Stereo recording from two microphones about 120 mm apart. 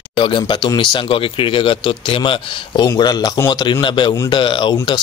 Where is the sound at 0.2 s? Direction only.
45° left (ahead or behind).